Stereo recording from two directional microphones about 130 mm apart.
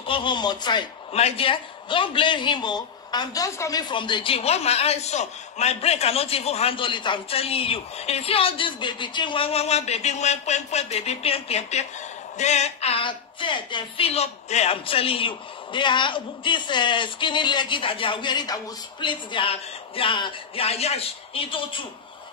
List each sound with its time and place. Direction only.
0.0 s a woman's voice: 40° left (ahead or behind)
1.1 s a man's voice: 50° left (ahead or behind)